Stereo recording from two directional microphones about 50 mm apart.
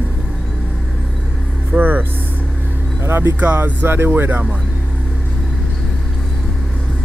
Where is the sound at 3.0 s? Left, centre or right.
Right.